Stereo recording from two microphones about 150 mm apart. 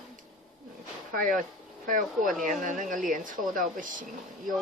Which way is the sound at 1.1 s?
65° right (ahead or behind).